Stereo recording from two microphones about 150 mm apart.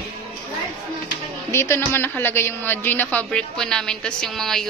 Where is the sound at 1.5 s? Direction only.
15° left (ahead or behind).